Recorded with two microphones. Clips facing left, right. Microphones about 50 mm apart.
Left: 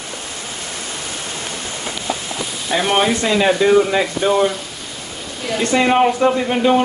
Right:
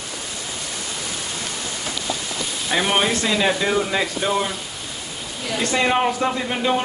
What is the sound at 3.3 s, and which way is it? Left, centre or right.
Speech, centre.